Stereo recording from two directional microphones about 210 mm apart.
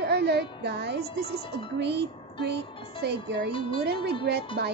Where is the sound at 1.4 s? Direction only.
25° left (ahead or behind).